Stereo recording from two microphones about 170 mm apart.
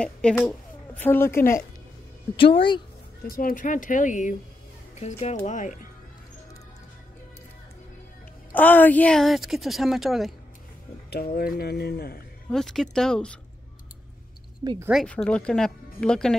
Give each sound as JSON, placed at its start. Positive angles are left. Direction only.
{"t": 0.0, "sound": "speech", "side_deg": 5}
{"t": 2.3, "sound": "speech", "side_deg": 30}
{"t": 3.3, "sound": "speech", "side_deg": 55}
{"t": 8.5, "sound": "speech", "side_deg": 10}
{"t": 11.1, "sound": "speech", "side_deg": 65}
{"t": 12.4, "sound": "speech", "side_deg": 0}
{"t": 14.9, "sound": "speech", "side_deg": 0}